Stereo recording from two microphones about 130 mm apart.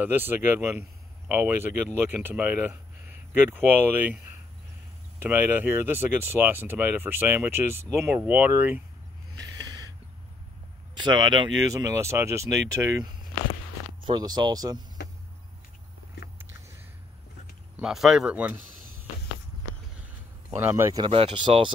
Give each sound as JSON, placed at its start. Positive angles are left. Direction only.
{"t": 0.0, "sound": "speech", "side_deg": -15}
{"t": 5.2, "sound": "speech", "side_deg": -15}
{"t": 9.4, "sound": "a sound", "side_deg": -30}
{"t": 11.0, "sound": "speech", "side_deg": -35}
{"t": 11.7, "sound": "speech", "side_deg": -25}
{"t": 17.7, "sound": "speech", "side_deg": 0}
{"t": 20.5, "sound": "speech", "side_deg": -20}
{"t": 21.1, "sound": "speech", "side_deg": -45}